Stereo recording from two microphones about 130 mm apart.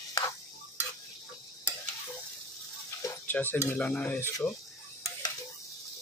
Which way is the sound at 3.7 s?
10° left (ahead or behind).